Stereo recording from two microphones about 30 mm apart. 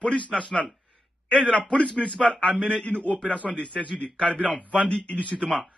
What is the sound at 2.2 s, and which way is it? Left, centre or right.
Speech, centre.